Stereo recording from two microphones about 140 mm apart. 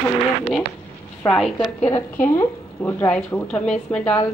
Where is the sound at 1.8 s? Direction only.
15° left (ahead or behind).